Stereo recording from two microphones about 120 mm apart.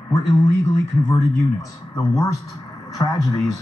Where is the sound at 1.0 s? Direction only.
25° left (ahead or behind).